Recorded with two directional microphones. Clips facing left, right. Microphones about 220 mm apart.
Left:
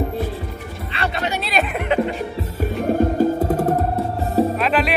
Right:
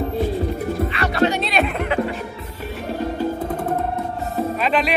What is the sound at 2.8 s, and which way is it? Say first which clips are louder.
Music: left 6 dB; 50° left (ahead or behind).